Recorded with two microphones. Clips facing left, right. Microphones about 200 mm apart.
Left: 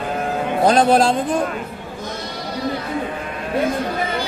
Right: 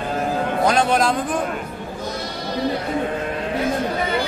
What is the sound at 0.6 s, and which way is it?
Speech, 35° left (ahead or behind).